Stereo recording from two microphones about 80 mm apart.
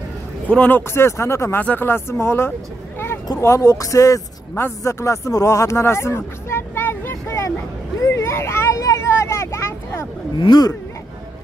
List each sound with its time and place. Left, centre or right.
0.5 s speech: left
1.6 s speech: left
4.6 s speech: left
8.0 s vehicle: left